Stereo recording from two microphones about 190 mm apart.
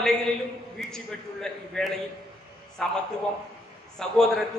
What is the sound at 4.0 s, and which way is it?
Speech, 5° left (ahead or behind).